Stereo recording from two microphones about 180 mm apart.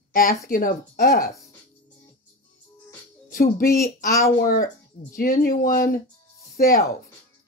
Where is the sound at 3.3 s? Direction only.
50° left (ahead or behind).